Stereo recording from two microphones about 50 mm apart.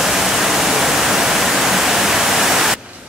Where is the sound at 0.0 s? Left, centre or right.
Centre.